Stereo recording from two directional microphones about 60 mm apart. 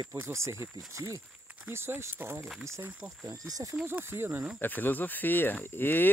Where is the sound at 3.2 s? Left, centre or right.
Right.